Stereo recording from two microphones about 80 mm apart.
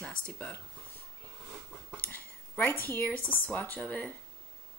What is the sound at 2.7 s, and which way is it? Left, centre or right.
Speech, left.